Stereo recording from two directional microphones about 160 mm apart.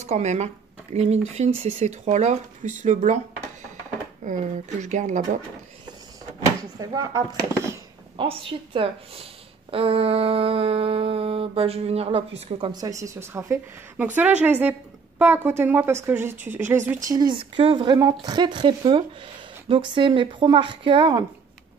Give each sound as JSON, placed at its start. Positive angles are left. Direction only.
{"t": 0.0, "sound": "a woman's voice", "side_deg": -45}
{"t": 4.2, "sound": "speech", "side_deg": -50}
{"t": 6.4, "sound": "speech", "side_deg": -20}
{"t": 8.2, "sound": "a woman's voice", "side_deg": -35}
{"t": 17.1, "sound": "a woman's voice", "side_deg": -30}